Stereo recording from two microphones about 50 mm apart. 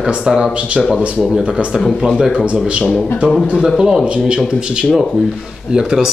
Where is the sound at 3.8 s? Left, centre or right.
Centre.